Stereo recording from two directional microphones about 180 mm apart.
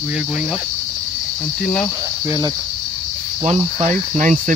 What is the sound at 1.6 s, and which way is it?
Speech, 5° left (ahead or behind).